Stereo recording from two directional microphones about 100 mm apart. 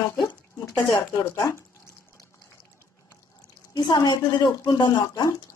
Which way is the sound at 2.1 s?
35° left (ahead or behind).